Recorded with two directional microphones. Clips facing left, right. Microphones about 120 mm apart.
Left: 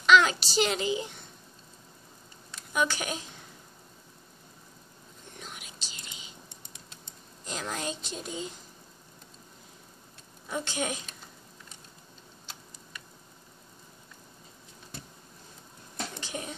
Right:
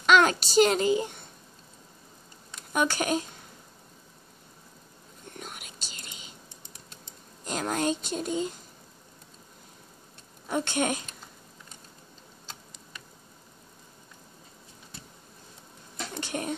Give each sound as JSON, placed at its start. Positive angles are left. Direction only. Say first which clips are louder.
{"t": 0.0, "sound": "a child's voice", "louder": "right 1 dB", "side_deg": -45}
{"t": 2.7, "sound": "a woman's voice", "louder": "right 4 dB", "side_deg": -50}
{"t": 5.4, "sound": "whispering", "louder": "right 2 dB", "side_deg": -50}
{"t": 7.4, "sound": "a woman's voice", "louder": "right 7 dB", "side_deg": -50}
{"t": 10.5, "sound": "a woman's voice", "louder": "right 5 dB", "side_deg": -55}
{"t": 16.2, "sound": "a sound", "louder": "right 11 dB", "side_deg": -55}